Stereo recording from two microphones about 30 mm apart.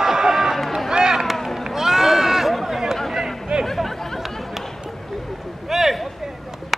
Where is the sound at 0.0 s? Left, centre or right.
Centre.